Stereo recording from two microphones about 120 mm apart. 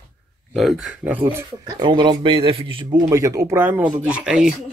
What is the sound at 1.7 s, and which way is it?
A man's voice, 40° right (ahead or behind).